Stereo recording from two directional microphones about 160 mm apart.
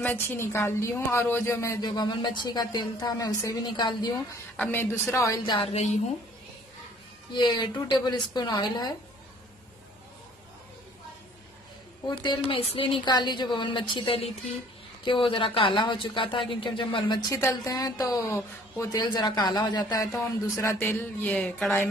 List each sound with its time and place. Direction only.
0.0 s a woman's voice: 15° left (ahead or behind)
4.6 s speech: 15° left (ahead or behind)
5.6 s speech: 40° left (ahead or behind)
7.3 s a woman's voice: 25° left (ahead or behind)
12.1 s speech: 25° left (ahead or behind)
17.4 s a woman's voice: 20° left (ahead or behind)
20.8 s speech: 10° left (ahead or behind)